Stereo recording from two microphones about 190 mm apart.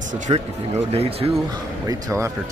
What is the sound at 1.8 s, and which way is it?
Speech, 15° right (ahead or behind).